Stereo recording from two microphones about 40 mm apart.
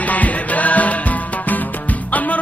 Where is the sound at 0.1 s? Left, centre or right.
Left.